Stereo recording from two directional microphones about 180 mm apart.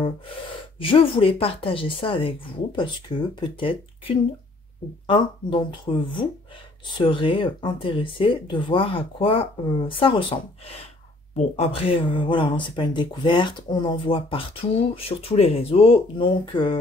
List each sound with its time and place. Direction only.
0.7 s speech: 30° left (ahead or behind)
11.3 s speech: 35° left (ahead or behind)